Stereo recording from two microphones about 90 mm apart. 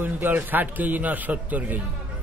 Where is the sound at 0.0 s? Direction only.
20° right (ahead or behind).